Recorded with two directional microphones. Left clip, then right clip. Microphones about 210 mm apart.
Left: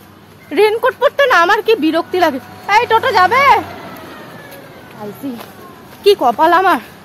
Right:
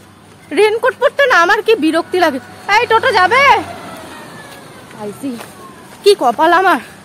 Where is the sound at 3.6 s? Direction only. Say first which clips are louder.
Right 1 dB; 55° right (ahead or behind).